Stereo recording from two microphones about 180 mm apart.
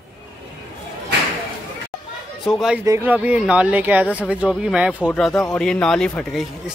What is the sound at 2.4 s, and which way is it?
Speech, centre (ahead or behind).